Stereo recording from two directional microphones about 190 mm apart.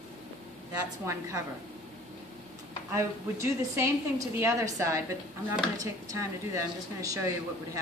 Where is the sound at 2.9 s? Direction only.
15° right (ahead or behind).